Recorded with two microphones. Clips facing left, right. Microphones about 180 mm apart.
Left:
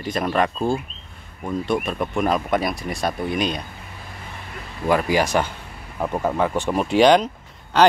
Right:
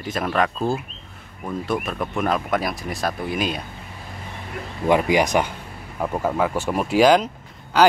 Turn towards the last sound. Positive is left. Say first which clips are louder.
# even
turn(degrees=0)  # may be behind; listen again after turning